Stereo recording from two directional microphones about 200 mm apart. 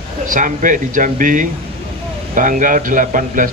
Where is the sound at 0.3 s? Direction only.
40° right (ahead or behind).